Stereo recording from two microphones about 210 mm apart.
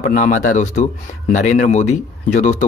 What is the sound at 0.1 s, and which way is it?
Speech, 35° left (ahead or behind).